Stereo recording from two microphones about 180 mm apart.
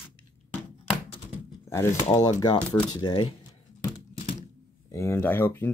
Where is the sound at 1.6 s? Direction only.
15° left (ahead or behind).